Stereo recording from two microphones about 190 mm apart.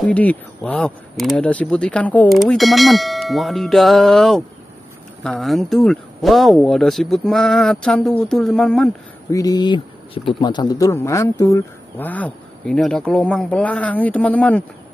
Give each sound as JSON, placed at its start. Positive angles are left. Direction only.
{"t": 0.0, "sound": "speech", "side_deg": 5}
{"t": 9.3, "sound": "speech", "side_deg": 20}